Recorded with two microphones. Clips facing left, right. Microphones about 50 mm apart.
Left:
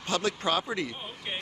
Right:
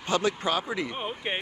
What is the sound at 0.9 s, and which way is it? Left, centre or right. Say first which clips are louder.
Speech: right 6 dB; right.